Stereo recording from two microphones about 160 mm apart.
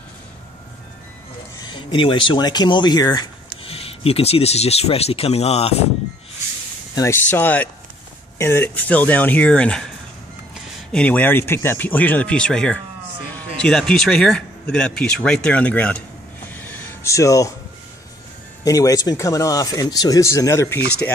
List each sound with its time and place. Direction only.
1.6 s speech: 30° left (ahead or behind)
3.6 s speech: 35° left (ahead or behind)
7.0 s a man's voice: 15° left (ahead or behind)
16.5 s a sound: 10° left (ahead or behind)
18.6 s speech: 20° left (ahead or behind)